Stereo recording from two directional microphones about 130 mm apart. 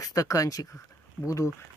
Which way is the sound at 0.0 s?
25° left (ahead or behind).